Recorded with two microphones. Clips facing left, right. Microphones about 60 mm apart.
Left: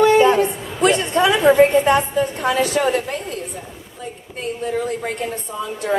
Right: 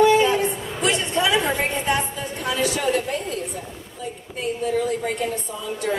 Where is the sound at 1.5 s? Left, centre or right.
Left.